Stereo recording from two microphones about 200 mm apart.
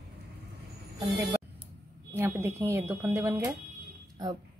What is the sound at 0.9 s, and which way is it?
A woman's voice, 15° right (ahead or behind).